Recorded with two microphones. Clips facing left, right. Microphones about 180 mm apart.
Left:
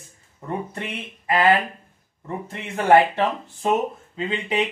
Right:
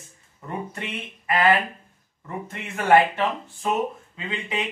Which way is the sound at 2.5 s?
30° left (ahead or behind).